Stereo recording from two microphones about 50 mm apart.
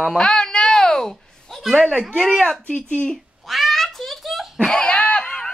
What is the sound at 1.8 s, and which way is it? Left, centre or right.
A woman's voice, centre.